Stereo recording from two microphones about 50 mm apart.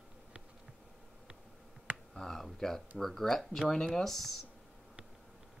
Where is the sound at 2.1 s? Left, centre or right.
Centre.